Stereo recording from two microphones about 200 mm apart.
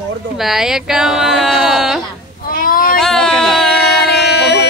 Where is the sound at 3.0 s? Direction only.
Centre (ahead or behind).